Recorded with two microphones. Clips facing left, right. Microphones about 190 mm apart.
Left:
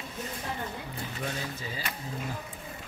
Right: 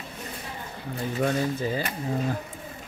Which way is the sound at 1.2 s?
50° right (ahead or behind).